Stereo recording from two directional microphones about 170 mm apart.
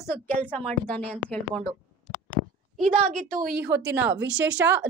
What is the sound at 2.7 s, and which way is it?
A woman's voice, 50° right (ahead or behind).